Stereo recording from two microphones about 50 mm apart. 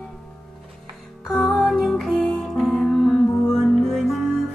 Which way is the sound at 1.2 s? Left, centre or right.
Centre.